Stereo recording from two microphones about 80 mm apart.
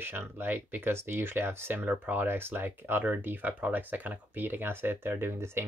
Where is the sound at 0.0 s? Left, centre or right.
Right.